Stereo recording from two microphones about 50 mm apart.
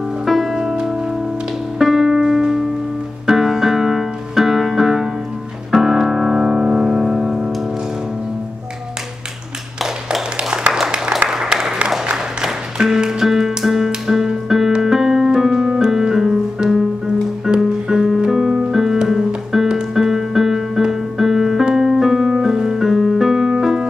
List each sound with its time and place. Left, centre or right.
0.2 s music: centre
1.8 s music: centre
10.5 s a sound: centre
12.8 s music: centre
14.8 s piano: centre
17.6 s music: centre
21.6 s keyboard: centre